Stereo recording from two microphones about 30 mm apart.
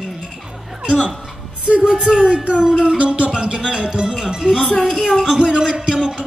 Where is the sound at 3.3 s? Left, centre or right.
Right.